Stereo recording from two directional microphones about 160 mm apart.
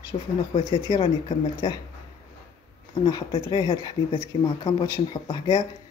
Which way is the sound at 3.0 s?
25° left (ahead or behind).